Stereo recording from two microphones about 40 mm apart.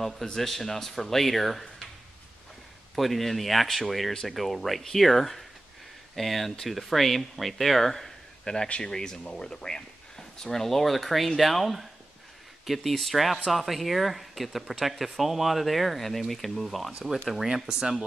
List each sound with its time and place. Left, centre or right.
0.0 s speech: centre
3.0 s speech: centre
4.1 s speech: centre
4.4 s speech: centre
17.5 s speech: centre